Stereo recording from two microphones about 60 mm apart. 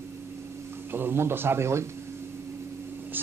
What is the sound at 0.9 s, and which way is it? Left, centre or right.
Speech, right.